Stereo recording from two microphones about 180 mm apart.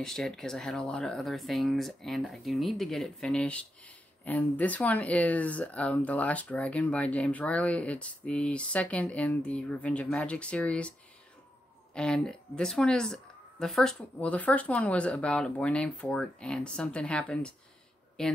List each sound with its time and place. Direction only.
0.0 s speech: centre (ahead or behind)
11.9 s speech: 5° left (ahead or behind)